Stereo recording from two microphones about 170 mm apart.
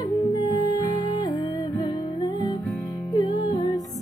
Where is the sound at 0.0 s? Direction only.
25° left (ahead or behind).